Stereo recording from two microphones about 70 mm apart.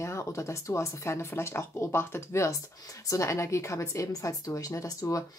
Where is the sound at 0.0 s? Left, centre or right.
Left.